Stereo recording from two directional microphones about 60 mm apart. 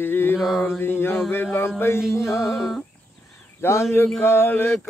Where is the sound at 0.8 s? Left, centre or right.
Left.